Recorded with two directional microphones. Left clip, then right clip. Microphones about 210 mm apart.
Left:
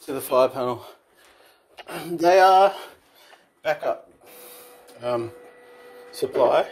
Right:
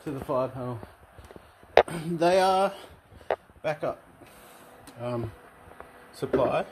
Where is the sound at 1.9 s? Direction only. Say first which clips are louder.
Left 5 dB; 5° right (ahead or behind).